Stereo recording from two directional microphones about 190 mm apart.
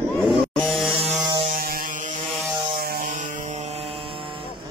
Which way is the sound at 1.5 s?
50° right (ahead or behind).